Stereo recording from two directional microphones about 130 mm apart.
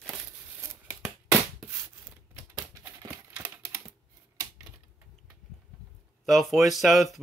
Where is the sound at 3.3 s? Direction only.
10° right (ahead or behind).